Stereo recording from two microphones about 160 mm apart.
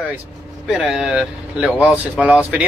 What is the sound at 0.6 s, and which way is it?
Speech, 5° right (ahead or behind).